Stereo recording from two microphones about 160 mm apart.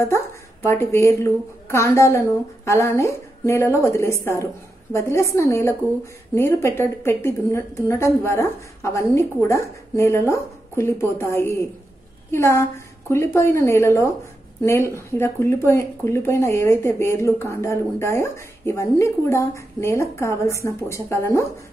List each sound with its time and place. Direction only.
0.0 s speech: 15° left (ahead or behind)